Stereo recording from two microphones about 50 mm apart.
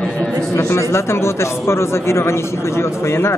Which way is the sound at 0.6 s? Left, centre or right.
Left.